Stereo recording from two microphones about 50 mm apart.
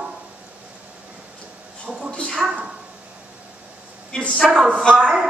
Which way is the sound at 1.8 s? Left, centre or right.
Centre.